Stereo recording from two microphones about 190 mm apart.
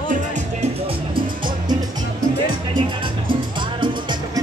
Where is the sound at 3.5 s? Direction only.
25° right (ahead or behind).